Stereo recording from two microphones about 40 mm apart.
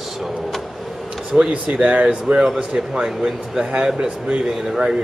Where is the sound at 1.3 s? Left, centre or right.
Right.